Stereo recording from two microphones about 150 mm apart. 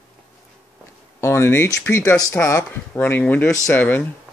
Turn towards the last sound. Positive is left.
turn(degrees=10)  # may be behind; listen again after turning